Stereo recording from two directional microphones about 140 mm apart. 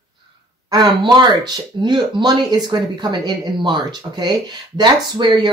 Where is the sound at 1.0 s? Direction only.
30° right (ahead or behind).